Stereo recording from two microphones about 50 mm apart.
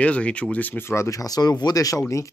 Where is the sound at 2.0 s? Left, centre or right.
Left.